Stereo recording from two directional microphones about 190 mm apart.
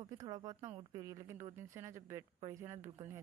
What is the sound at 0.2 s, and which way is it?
Speech, 20° right (ahead or behind).